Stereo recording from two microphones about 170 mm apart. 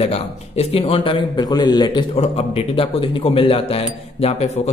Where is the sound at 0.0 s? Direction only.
35° left (ahead or behind).